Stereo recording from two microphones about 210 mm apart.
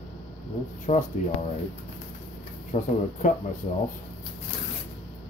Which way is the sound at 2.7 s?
35° left (ahead or behind).